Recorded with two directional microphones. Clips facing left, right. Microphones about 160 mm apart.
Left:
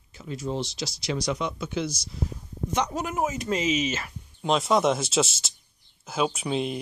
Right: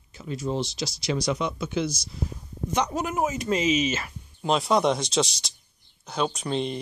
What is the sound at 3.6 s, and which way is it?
Speech, 90° right.